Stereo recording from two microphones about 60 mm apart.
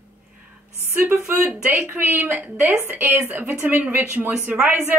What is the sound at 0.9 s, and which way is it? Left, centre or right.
A man's voice, right.